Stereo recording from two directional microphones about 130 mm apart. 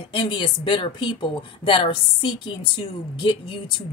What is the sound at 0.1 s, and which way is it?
Speech, 40° left (ahead or behind).